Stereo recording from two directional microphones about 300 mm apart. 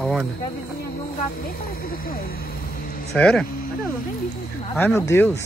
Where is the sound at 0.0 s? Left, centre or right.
Centre.